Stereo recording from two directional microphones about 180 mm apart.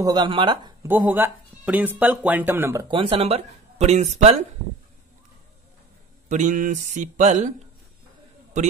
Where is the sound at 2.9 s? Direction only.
30° right (ahead or behind).